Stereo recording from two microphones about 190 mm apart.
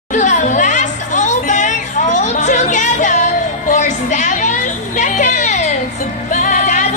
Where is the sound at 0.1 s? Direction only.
40° left (ahead or behind).